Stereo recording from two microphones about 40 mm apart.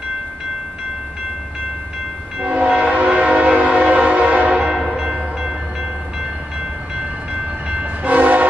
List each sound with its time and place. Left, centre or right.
2.4 s train horn: right
3.0 s train: right
4.8 s train: centre
7.7 s train: right